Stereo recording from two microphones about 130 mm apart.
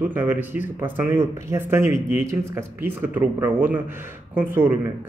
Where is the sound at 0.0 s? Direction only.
15° right (ahead or behind).